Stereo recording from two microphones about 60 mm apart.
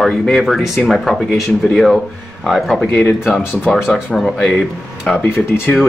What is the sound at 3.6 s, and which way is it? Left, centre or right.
Speech, centre.